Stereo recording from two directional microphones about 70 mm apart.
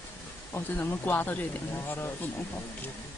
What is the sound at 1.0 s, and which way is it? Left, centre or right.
Speech, left.